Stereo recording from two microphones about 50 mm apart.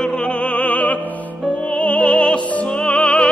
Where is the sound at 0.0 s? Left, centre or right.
Left.